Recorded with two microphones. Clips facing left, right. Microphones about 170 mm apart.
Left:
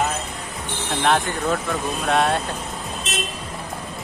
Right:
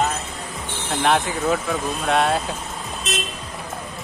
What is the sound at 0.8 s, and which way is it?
Speech, centre (ahead or behind).